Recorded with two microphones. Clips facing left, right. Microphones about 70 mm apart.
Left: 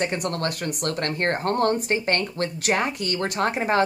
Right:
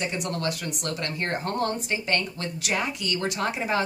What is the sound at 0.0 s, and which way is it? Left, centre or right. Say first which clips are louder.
Speech: left 3 dB; left.